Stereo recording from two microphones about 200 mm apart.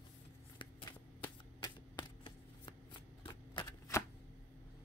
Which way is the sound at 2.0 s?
20° left (ahead or behind).